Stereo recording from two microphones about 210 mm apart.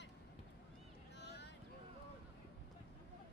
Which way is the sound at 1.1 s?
55° left (ahead or behind).